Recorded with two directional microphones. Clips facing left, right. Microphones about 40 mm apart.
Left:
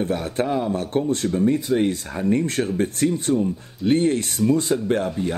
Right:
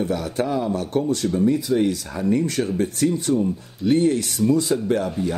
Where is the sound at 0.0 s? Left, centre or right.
Left.